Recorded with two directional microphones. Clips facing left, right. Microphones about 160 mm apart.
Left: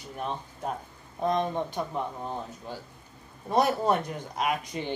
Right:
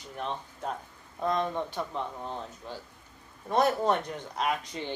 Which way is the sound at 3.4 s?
10° left (ahead or behind).